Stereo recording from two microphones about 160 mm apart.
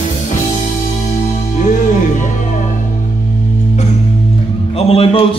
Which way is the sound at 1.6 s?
50° left (ahead or behind).